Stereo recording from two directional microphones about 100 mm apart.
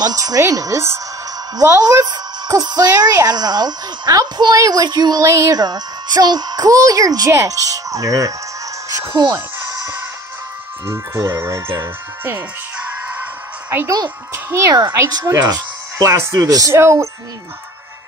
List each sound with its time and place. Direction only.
0.0 s a woman's voice: 35° right (ahead or behind)
9.0 s a sound: 45° right (ahead or behind)
11.3 s speech: 25° right (ahead or behind)
13.7 s a child's voice: 20° right (ahead or behind)
14.7 s speech: 40° right (ahead or behind)